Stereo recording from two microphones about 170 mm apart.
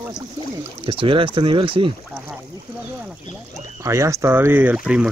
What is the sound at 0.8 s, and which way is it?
Speech, 30° right (ahead or behind).